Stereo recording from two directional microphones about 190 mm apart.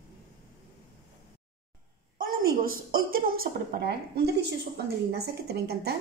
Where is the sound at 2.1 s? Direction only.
45° right (ahead or behind).